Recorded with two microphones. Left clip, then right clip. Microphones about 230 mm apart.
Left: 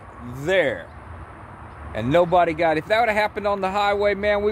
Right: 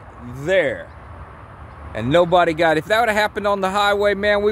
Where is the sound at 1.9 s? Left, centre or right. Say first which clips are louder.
Right 3 dB; centre.